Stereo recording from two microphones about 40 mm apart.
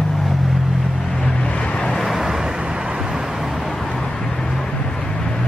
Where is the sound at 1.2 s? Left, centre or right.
Left.